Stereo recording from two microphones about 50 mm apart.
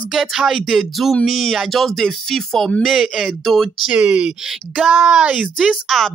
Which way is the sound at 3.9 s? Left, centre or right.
Right.